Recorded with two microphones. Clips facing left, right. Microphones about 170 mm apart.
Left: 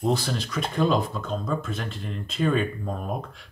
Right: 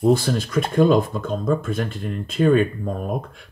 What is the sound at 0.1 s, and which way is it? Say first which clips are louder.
Speech: right 8 dB; 50° right (ahead or behind).